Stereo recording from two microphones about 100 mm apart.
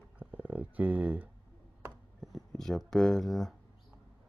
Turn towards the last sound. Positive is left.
turn(degrees=0)  # may be behind; listen again after turning